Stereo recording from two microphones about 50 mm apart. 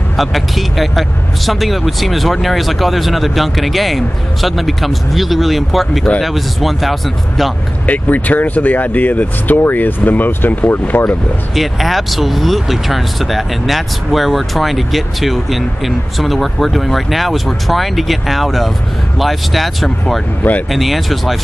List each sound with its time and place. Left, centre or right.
0.2 s speech: centre
7.8 s speech: left
11.5 s speech: centre